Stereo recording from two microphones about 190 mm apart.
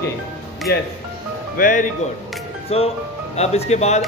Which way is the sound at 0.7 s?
55° left (ahead or behind).